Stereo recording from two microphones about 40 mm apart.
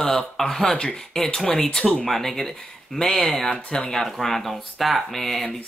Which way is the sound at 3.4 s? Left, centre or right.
Centre.